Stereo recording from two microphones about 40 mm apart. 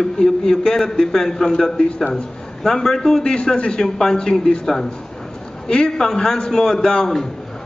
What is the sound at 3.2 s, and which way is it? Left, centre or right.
A man's voice, left.